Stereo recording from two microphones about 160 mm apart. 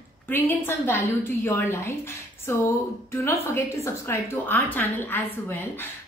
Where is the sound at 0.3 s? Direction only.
15° left (ahead or behind).